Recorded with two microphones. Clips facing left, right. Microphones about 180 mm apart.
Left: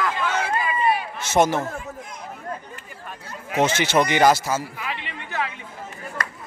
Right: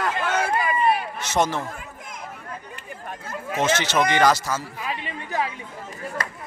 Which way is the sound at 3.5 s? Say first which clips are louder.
Left 2 dB; 10° left (ahead or behind).